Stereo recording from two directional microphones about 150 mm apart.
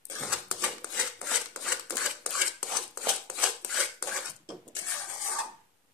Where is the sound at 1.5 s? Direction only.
Centre (ahead or behind).